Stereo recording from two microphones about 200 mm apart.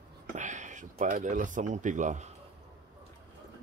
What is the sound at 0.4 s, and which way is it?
Speech, 40° right (ahead or behind).